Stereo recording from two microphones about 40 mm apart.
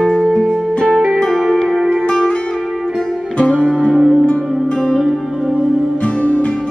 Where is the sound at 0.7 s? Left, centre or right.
Left.